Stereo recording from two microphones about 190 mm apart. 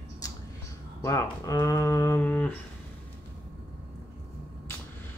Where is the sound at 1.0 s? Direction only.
15° left (ahead or behind).